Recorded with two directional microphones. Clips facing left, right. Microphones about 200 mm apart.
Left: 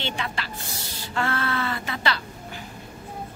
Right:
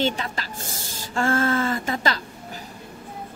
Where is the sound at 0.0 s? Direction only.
40° right (ahead or behind).